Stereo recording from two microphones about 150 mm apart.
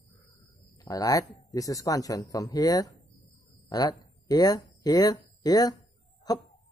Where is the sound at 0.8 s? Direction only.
25° left (ahead or behind).